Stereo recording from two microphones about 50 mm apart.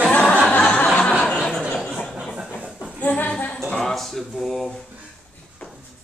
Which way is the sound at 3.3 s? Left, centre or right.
Left.